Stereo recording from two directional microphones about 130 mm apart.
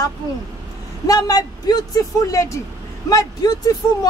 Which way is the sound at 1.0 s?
30° left (ahead or behind).